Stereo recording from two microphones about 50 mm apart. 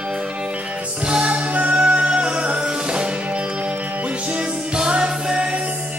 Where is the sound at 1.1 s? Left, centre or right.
Right.